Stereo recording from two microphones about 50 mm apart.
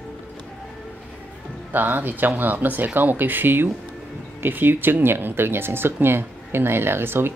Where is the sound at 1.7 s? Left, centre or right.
Right.